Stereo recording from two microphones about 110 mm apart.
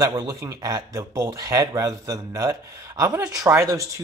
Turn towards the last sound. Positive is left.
turn(degrees=-30)  # may be behind; listen again after turning